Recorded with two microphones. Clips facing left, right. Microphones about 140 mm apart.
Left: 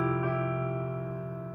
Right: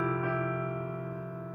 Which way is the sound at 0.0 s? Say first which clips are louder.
Left 1 dB; 20° left (ahead or behind).